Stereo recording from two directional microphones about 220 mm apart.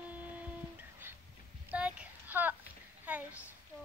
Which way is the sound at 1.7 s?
5° right (ahead or behind).